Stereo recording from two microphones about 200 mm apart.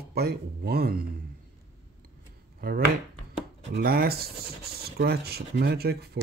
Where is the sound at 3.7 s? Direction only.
50° right (ahead or behind).